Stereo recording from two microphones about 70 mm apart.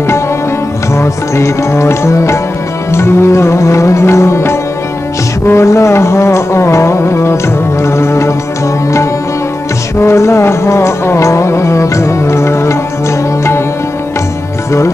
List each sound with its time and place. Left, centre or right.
0.9 s music: left
2.9 s carnatic music: left
9.9 s music: left